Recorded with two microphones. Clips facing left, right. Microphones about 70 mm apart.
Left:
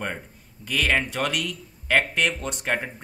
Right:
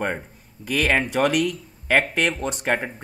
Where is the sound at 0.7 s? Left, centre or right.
Centre.